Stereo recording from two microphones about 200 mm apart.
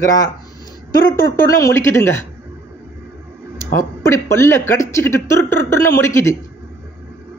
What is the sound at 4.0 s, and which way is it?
A man's voice, 15° left (ahead or behind).